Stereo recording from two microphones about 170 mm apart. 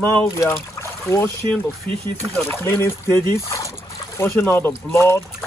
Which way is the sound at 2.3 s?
15° left (ahead or behind).